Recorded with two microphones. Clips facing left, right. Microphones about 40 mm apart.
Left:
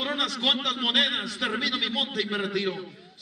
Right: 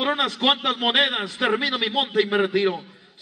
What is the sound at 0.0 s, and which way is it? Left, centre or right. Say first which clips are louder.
A man's voice: right 5 dB; right.